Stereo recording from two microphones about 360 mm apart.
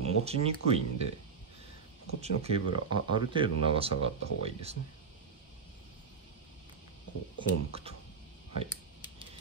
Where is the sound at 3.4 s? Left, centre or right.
Centre.